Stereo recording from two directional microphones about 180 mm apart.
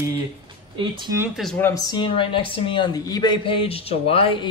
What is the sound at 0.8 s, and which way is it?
Speech, 25° right (ahead or behind).